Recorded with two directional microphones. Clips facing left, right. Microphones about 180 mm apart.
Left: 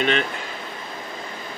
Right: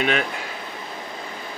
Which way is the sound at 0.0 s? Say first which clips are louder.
Left 1 dB; 5° right (ahead or behind).